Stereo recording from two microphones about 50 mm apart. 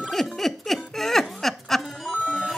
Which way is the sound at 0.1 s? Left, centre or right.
Centre.